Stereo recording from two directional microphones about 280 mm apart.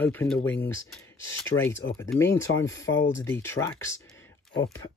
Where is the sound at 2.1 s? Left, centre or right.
Centre.